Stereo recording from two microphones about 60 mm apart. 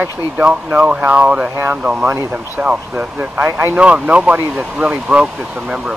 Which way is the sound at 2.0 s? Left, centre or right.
Right.